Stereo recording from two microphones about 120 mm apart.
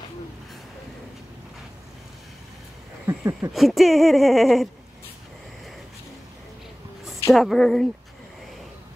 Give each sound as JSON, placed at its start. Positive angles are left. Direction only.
{"t": 3.1, "sound": "a sound", "side_deg": -25}
{"t": 3.5, "sound": "speech", "side_deg": 0}
{"t": 7.3, "sound": "speech", "side_deg": 0}